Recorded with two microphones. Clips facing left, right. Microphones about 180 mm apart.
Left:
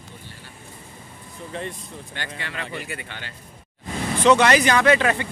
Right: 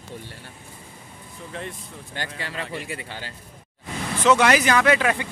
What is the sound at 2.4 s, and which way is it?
Speech, 35° right (ahead or behind).